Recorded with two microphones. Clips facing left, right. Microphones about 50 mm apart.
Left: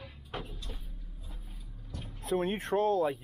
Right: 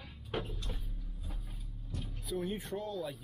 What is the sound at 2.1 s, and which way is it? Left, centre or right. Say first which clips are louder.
Speech: left 7 dB; left.